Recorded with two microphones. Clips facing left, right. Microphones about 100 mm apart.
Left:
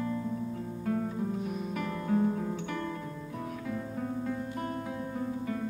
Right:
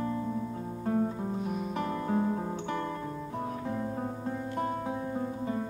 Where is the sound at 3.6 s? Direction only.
35° right (ahead or behind).